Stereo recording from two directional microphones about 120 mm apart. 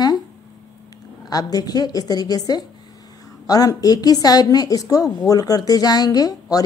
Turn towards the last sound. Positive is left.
turn(degrees=30)  # may be behind; listen again after turning